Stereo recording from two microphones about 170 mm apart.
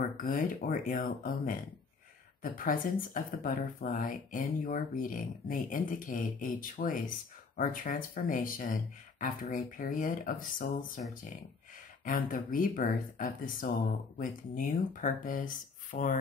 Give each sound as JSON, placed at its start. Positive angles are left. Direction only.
{"t": 0.2, "sound": "speech", "side_deg": 55}
{"t": 12.0, "sound": "speech", "side_deg": 55}